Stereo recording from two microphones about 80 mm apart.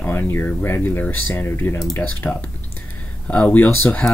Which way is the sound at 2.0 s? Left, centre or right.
Centre.